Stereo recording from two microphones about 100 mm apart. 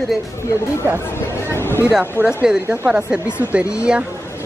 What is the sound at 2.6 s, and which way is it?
Speech, 25° right (ahead or behind).